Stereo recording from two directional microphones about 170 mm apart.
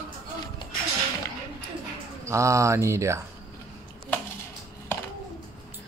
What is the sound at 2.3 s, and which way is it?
Speech, 15° right (ahead or behind).